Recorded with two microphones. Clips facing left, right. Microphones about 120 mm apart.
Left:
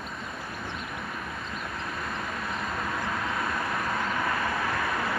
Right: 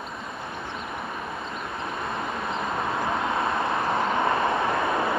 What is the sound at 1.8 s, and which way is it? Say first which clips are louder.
Vehicle: right 6 dB; 25° right (ahead or behind).